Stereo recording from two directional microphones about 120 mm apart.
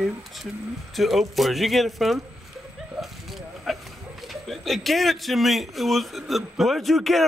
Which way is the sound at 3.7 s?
Centre (ahead or behind).